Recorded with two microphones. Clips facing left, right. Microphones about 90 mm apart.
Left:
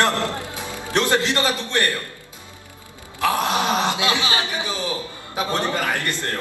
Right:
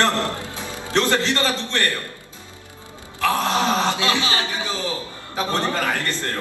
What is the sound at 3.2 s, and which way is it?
A man's voice, 15° left (ahead or behind).